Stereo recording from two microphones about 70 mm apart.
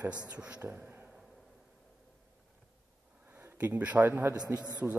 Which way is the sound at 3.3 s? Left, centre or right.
Right.